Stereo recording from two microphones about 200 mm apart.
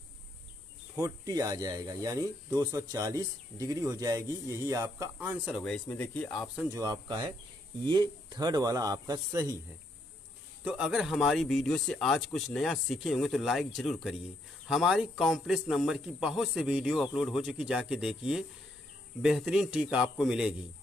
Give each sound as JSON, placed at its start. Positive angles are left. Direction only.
{"t": 0.9, "sound": "speech", "side_deg": -20}
{"t": 5.6, "sound": "speech", "side_deg": 5}
{"t": 6.7, "sound": "a man's voice", "side_deg": -20}
{"t": 10.6, "sound": "speech", "side_deg": -5}